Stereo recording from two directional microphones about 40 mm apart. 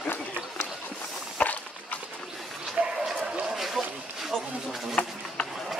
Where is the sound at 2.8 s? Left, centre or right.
Centre.